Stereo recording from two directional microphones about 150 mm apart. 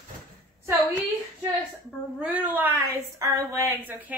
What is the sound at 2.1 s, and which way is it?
A woman's voice, 10° right (ahead or behind).